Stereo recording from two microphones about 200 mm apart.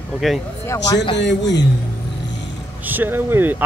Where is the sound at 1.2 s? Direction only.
60° left (ahead or behind).